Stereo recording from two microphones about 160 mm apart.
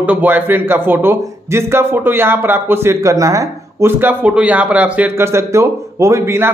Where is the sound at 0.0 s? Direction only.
10° right (ahead or behind).